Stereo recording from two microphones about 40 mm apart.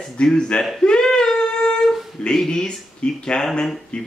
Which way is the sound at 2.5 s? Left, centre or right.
Centre.